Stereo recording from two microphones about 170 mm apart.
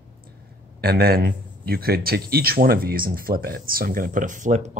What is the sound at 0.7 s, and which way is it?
A man's voice, 65° right (ahead or behind).